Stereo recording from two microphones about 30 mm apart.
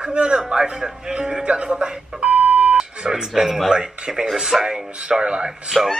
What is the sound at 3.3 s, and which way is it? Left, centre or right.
Speech, centre.